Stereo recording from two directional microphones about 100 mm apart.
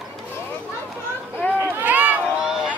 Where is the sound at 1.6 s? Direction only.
20° right (ahead or behind).